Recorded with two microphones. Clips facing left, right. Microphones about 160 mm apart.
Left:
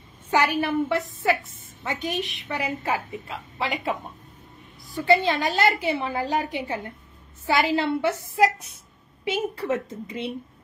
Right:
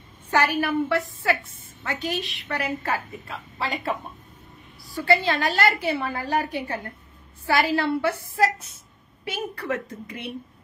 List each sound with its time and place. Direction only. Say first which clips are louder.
0.3 s a woman's voice: even; 15° left (ahead or behind)